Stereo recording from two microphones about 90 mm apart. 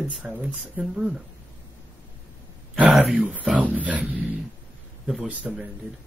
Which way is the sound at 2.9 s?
10° right (ahead or behind).